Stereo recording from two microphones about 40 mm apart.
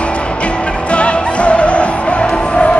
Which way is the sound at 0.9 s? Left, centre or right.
Left.